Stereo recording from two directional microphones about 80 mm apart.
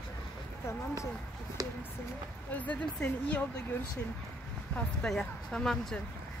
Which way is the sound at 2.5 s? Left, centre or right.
Centre.